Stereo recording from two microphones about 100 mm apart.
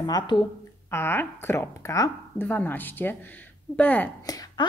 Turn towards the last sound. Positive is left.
turn(degrees=40)  # may be behind; listen again after turning